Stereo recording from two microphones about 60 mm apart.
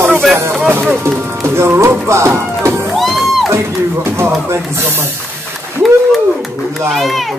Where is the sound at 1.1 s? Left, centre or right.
Right.